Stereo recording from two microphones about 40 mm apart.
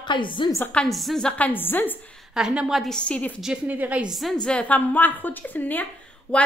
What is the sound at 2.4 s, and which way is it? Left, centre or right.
Speech, centre.